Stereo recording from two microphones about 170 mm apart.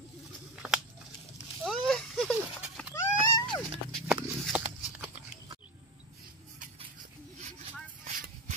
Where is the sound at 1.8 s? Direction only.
Centre (ahead or behind).